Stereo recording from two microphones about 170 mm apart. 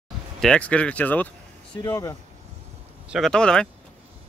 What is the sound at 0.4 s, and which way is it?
Speech, 5° left (ahead or behind).